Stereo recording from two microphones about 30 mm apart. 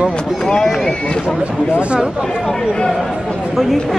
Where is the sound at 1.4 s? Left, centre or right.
Right.